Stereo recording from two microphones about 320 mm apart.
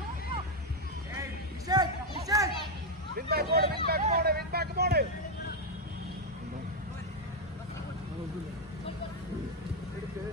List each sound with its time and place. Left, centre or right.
1.7 s children playing: centre
3.2 s vehicle: right